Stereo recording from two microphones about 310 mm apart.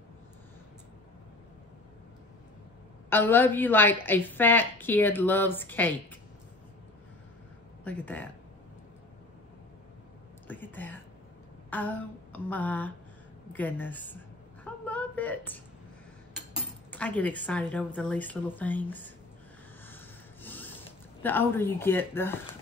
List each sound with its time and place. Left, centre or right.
3.1 s a woman's voice: centre
7.8 s a woman's voice: centre
10.5 s a sound: centre
13.5 s a woman's voice: centre
14.6 s a sound: centre
16.9 s a woman's voice: centre
20.4 s zipper: centre